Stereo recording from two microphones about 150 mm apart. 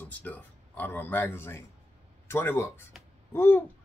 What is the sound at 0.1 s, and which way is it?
A man's voice, 10° left (ahead or behind).